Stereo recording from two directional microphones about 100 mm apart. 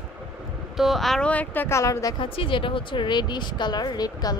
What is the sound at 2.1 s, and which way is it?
Speech, 60° left (ahead or behind).